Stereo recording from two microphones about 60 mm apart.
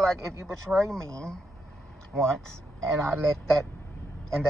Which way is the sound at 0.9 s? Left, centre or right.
Centre.